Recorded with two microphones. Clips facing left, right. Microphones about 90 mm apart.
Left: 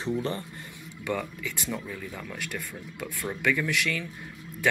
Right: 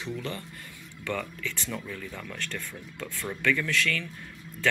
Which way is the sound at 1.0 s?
15° left (ahead or behind).